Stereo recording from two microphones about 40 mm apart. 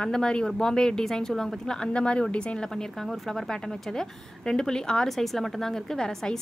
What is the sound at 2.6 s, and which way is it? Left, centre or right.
A woman's voice, centre.